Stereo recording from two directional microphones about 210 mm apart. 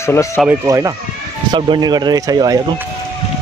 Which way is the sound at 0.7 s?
15° right (ahead or behind).